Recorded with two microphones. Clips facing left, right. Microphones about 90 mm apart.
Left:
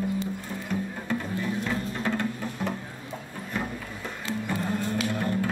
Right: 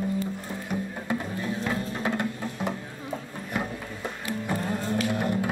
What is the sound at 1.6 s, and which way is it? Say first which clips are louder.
Music: right 1 dB; 15° right (ahead or behind).